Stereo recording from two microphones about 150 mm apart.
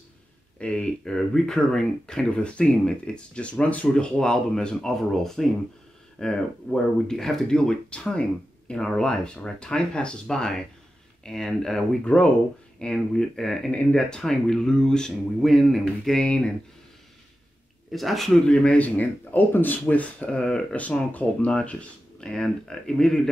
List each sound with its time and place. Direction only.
0.6 s speech: 5° left (ahead or behind)
17.9 s speech: centre (ahead or behind)